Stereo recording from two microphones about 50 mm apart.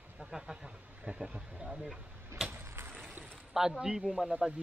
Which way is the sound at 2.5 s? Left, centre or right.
Right.